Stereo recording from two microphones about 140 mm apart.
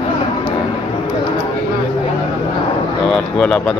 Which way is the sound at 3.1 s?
5° left (ahead or behind).